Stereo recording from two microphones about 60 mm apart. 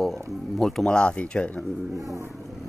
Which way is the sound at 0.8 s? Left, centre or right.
Centre.